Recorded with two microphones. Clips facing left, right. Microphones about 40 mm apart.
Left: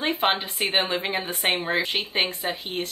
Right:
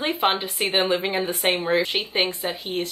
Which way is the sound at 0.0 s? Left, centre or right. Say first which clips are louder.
Right 1 dB; centre.